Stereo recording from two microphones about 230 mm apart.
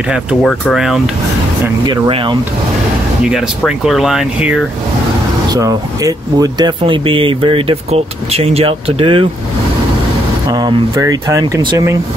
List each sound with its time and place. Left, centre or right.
0.1 s speech: centre
1.9 s speech: right
3.3 s speech: centre
5.5 s speech: centre
10.5 s speech: centre